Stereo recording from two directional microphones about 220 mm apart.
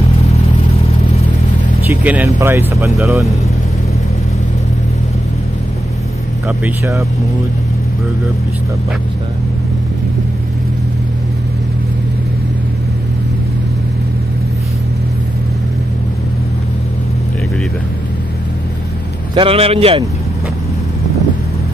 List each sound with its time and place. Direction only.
1.9 s speech: 10° right (ahead or behind)
6.4 s speech: 10° right (ahead or behind)
19.3 s a man's voice: 25° right (ahead or behind)